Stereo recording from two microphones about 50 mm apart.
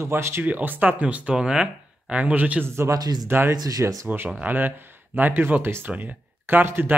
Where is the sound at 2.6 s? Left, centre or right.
Right.